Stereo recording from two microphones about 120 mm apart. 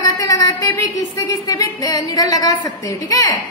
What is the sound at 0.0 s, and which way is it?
Speech, 30° left (ahead or behind).